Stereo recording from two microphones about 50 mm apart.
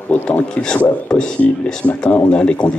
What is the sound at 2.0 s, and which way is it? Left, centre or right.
Speech, left.